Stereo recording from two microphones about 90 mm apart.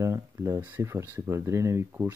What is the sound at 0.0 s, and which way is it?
Speech, 35° right (ahead or behind).